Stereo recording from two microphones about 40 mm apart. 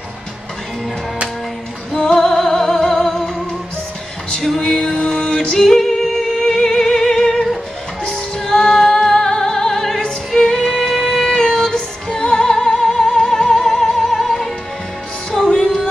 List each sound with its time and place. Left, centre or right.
2.1 s music: centre
4.6 s music: centre
5.6 s music: centre
8.7 s music: centre
15.3 s music: centre